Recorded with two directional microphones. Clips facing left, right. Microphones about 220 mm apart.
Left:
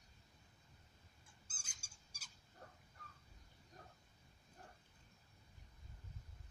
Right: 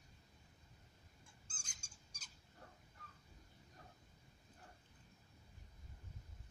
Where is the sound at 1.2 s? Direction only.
5° left (ahead or behind).